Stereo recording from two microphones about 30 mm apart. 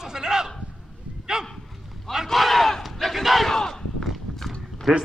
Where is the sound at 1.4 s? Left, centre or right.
Centre.